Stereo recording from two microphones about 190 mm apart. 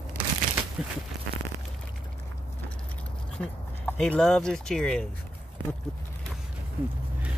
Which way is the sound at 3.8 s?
5° left (ahead or behind).